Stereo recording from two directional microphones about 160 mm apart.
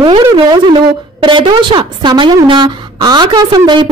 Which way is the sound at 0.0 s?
30° right (ahead or behind).